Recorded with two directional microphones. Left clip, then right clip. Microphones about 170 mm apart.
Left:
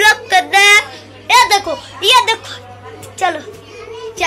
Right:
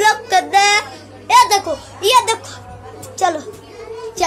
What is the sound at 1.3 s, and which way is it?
A child's voice, centre (ahead or behind).